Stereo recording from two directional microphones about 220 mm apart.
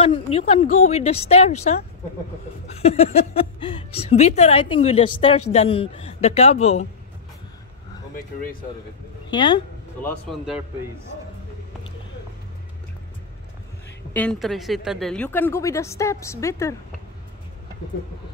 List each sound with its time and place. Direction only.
0.0 s a woman's voice: 25° left (ahead or behind)
2.8 s a woman's voice: 30° left (ahead or behind)
8.1 s speech: 40° left (ahead or behind)
9.3 s a woman's voice: 20° left (ahead or behind)
14.1 s speech: 5° left (ahead or behind)